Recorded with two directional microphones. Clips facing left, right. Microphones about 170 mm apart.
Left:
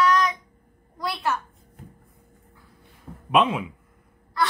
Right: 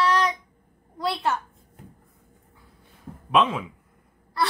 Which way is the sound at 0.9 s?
25° right (ahead or behind).